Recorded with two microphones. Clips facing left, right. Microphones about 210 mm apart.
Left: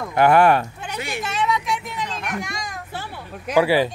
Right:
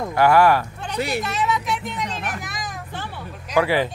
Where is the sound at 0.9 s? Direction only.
35° right (ahead or behind).